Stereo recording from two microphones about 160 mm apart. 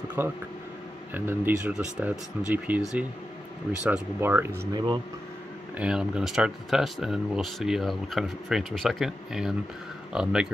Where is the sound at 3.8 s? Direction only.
10° right (ahead or behind).